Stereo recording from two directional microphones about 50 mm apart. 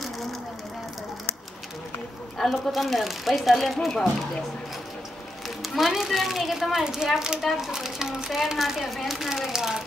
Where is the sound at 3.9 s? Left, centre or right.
Centre.